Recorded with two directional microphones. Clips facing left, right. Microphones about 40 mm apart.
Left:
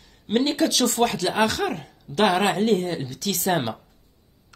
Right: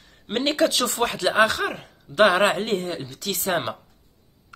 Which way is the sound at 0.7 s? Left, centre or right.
Right.